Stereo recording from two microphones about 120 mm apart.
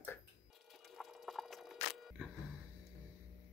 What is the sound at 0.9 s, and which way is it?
Music, centre (ahead or behind).